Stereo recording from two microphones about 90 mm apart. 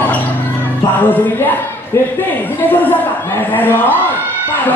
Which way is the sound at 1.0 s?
20° left (ahead or behind).